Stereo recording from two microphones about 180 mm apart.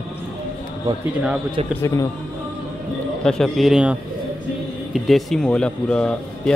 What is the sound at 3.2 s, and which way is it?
Speech, 5° left (ahead or behind).